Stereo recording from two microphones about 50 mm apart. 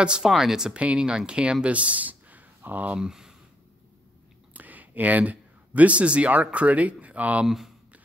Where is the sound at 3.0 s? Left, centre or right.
Centre.